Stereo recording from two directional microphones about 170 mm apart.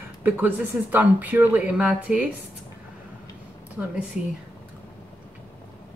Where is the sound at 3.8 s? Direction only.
5° right (ahead or behind).